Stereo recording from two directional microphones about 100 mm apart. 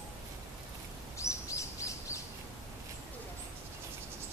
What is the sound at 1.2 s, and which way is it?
Bird vocalization, 30° left (ahead or behind).